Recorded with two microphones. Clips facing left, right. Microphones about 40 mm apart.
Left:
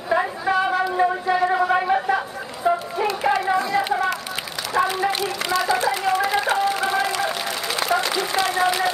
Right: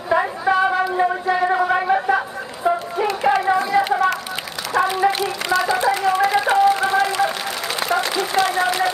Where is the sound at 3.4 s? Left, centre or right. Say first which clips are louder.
Right 3 dB; centre.